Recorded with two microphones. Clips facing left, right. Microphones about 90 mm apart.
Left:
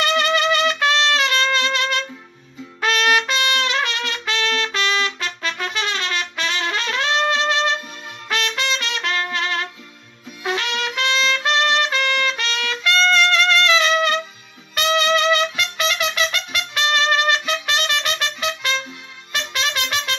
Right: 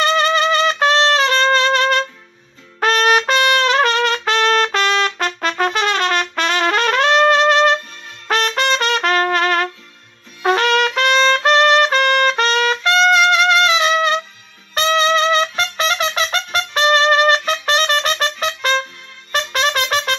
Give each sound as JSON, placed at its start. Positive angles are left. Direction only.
{"t": 0.0, "sound": "trumpet", "side_deg": -30}
{"t": 12.8, "sound": "trumpet", "side_deg": -20}
{"t": 14.8, "sound": "music", "side_deg": -30}